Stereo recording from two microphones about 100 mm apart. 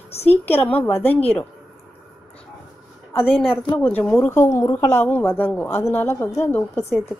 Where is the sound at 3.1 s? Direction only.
20° left (ahead or behind).